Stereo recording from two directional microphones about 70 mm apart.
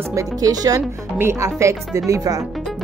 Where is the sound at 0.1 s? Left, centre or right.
Right.